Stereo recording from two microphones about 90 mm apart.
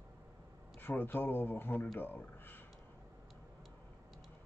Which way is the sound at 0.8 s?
25° left (ahead or behind).